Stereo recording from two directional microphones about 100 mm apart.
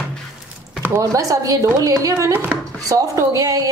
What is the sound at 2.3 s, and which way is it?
Speech, 20° right (ahead or behind).